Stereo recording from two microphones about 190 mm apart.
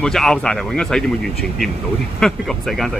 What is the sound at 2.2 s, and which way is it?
Speech, centre (ahead or behind).